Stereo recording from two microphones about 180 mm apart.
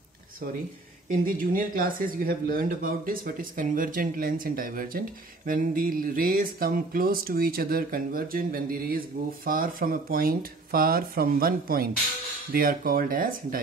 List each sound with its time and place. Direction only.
1.4 s speech: 50° right (ahead or behind)